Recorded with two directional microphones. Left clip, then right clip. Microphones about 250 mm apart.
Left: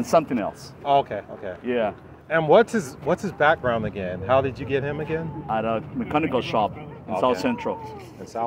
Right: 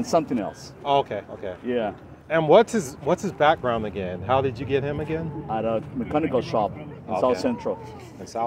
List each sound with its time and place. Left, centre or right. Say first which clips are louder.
0.0 s speech: left 2 dB; left
0.8 s speech: left 1 dB; centre
1.7 s speech: left 2 dB; left
2.2 s speech: even; centre
5.5 s speech: left 1 dB; left
8.3 s speech: even; centre